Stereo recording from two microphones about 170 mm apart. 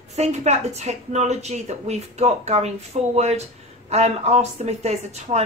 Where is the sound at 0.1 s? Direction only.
40° right (ahead or behind).